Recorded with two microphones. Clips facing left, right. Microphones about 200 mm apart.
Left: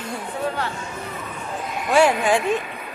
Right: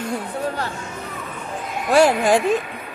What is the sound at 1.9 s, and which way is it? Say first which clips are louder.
Speech: right 2 dB; 40° right (ahead or behind).